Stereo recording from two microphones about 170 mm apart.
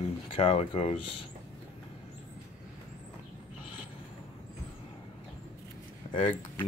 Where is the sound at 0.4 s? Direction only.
40° left (ahead or behind).